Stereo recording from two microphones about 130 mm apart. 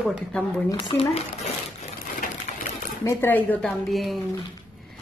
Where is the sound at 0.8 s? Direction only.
45° left (ahead or behind).